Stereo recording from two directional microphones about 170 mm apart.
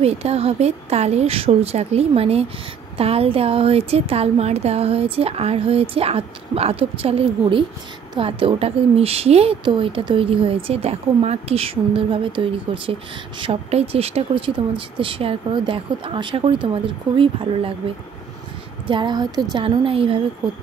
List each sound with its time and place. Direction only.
0.0 s a woman's voice: 35° right (ahead or behind)